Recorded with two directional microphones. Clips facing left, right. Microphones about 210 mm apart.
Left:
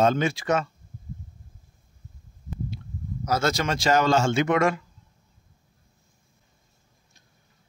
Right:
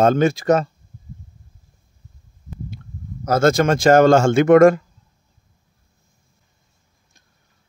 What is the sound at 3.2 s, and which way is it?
Speech, 50° right (ahead or behind).